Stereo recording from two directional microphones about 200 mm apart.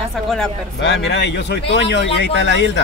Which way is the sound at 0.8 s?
60° left (ahead or behind).